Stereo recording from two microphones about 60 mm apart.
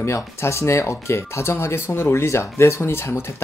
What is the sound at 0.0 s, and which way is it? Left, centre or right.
Speech, left.